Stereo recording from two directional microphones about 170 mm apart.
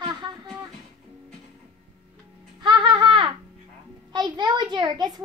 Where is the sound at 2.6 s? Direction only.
25° right (ahead or behind).